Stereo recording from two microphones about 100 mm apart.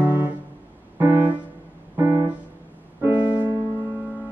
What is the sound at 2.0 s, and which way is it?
Music, 30° right (ahead or behind).